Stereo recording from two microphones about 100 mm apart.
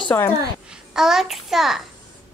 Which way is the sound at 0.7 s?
5° right (ahead or behind).